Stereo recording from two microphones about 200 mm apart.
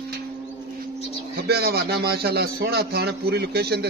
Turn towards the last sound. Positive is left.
turn(degrees=-55)  # may be behind; listen again after turning